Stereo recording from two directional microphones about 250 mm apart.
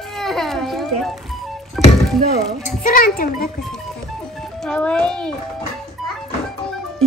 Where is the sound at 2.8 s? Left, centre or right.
Left.